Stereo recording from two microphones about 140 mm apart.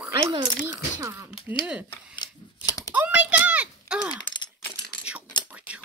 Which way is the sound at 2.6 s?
25° left (ahead or behind).